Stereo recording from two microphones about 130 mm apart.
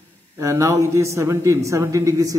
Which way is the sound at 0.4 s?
25° right (ahead or behind).